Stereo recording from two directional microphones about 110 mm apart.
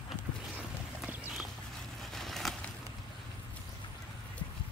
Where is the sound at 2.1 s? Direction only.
Centre (ahead or behind).